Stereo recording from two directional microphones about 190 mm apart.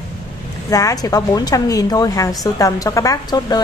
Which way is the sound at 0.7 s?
15° left (ahead or behind).